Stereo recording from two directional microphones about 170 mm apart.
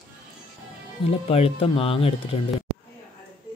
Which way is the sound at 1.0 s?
35° left (ahead or behind).